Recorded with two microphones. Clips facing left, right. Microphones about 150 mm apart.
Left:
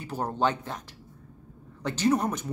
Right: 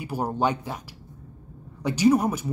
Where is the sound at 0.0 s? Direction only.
10° right (ahead or behind).